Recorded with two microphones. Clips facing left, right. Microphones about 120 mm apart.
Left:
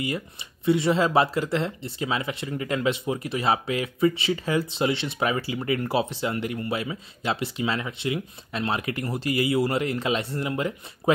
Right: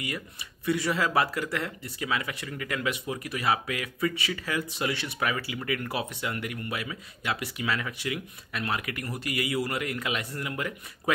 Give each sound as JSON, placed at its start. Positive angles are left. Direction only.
{"t": 0.0, "sound": "speech", "side_deg": 25}